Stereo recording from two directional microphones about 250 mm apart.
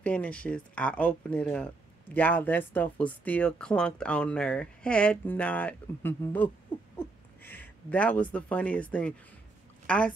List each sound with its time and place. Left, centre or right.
0.0 s speech: centre